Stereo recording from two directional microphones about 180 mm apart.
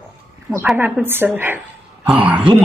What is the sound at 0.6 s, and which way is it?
A woman's voice, 10° right (ahead or behind).